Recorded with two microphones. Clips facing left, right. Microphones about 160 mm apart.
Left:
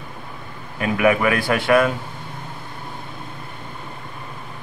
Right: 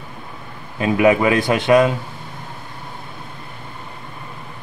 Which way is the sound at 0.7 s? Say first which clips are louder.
Right 3 dB; 25° right (ahead or behind).